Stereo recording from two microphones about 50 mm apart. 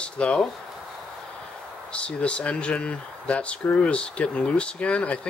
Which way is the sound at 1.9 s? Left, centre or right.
Left.